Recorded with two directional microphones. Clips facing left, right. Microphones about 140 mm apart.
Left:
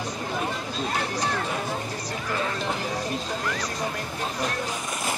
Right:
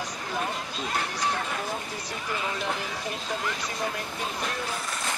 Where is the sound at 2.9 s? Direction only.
40° left (ahead or behind).